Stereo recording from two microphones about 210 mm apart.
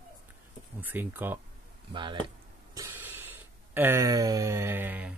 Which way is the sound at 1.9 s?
20° right (ahead or behind).